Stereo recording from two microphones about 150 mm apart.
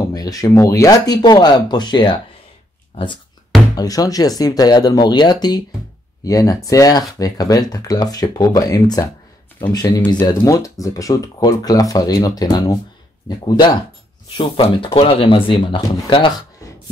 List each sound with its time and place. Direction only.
0.1 s speech: 25° left (ahead or behind)
3.7 s speech: 25° left (ahead or behind)